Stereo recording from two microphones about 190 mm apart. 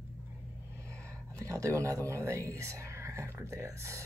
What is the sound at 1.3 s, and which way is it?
Speech, 15° right (ahead or behind).